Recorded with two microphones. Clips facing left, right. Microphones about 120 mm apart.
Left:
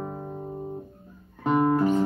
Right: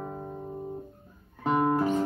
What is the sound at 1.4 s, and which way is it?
Music, centre (ahead or behind).